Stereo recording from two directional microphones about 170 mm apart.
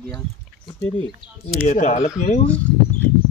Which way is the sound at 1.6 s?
45° left (ahead or behind).